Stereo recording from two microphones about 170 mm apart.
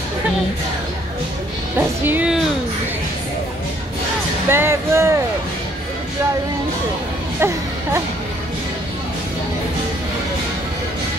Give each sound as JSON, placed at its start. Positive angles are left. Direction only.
{"t": 1.8, "sound": "speech", "side_deg": -10}
{"t": 4.5, "sound": "speech", "side_deg": -15}
{"t": 7.3, "sound": "music", "side_deg": -15}